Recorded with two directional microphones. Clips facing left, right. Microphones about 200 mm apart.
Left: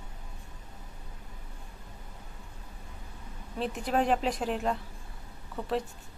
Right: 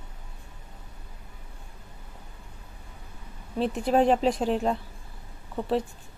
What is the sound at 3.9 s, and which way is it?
Speech, 30° right (ahead or behind).